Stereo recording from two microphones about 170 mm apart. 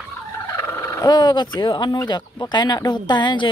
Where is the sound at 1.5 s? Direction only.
25° left (ahead or behind).